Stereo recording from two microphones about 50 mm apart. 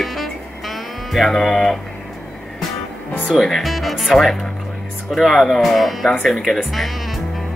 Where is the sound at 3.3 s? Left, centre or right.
Centre.